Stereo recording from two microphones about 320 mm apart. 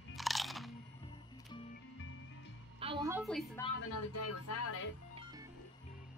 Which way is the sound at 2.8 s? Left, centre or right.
Centre.